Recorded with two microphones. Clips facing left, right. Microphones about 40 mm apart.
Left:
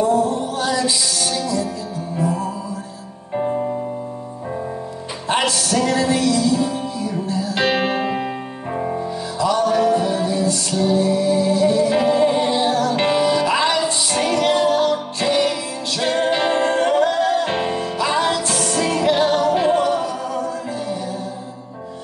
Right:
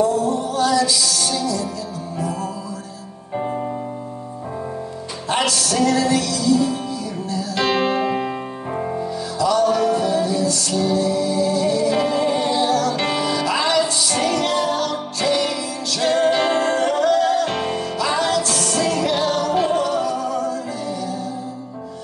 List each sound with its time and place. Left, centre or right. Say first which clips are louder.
0.0 s music: left 1 dB; left
5.3 s music: left 1 dB; left
8.7 s music: left 2 dB; centre
9.4 s music: even; left